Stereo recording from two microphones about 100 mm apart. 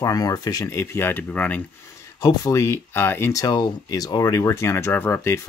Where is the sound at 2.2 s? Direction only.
35° left (ahead or behind).